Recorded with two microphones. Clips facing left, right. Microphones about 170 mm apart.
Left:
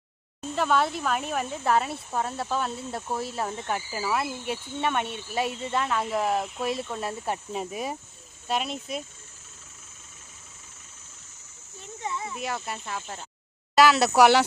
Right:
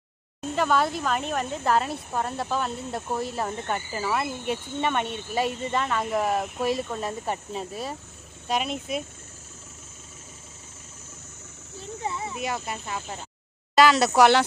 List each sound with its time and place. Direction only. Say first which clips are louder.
0.6 s speech: right 1 dB; centre (ahead or behind)
8.5 s speech: right 2 dB; centre (ahead or behind)
12.0 s a sound: right 1 dB; 30° right (ahead or behind)
12.4 s speech: right 2 dB; centre (ahead or behind)